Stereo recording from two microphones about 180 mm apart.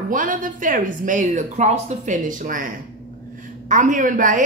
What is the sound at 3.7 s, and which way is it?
Speech, 45° right (ahead or behind).